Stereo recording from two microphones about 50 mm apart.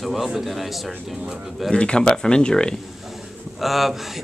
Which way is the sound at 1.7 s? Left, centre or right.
Centre.